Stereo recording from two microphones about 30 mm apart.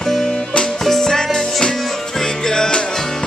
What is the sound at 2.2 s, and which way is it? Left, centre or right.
Music, left.